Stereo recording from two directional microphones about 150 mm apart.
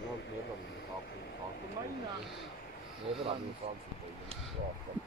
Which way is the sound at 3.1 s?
40° right (ahead or behind).